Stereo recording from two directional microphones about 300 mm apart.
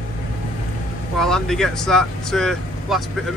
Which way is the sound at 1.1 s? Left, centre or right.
Centre.